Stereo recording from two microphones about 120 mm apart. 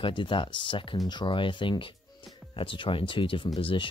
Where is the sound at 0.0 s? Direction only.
40° left (ahead or behind).